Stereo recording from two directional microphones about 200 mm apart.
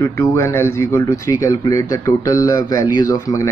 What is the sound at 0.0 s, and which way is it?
Speech, 15° left (ahead or behind).